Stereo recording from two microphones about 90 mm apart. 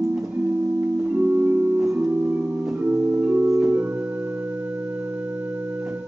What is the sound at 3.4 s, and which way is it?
Music, 5° right (ahead or behind).